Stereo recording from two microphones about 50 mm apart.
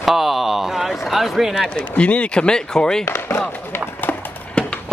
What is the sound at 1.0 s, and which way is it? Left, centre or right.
Speech, centre.